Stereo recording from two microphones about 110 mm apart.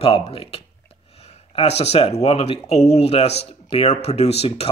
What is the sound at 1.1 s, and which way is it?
Speech, 70° left (ahead or behind).